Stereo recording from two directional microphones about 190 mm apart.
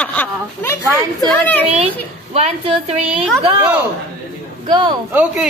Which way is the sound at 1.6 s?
35° right (ahead or behind).